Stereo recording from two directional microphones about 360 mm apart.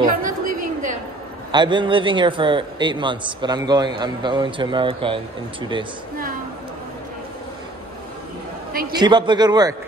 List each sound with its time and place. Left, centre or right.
0.0 s a woman's voice: right
0.5 s a sound: right
1.5 s a man's voice: centre
8.9 s a man's voice: centre